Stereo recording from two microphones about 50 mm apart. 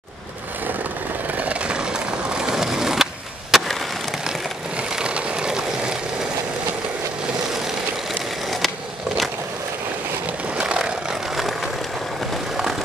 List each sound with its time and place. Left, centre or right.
1.3 s vehicle: right
2.5 s skateboard: centre
4.3 s vehicle: centre
8.5 s skateboard: centre
10.6 s vehicle: centre